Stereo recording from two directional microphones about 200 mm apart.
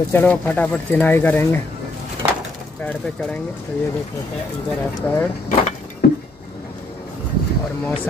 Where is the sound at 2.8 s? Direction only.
5° left (ahead or behind).